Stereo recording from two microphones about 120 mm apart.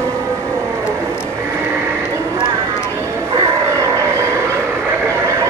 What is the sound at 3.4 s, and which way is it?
Vehicle, 25° right (ahead or behind).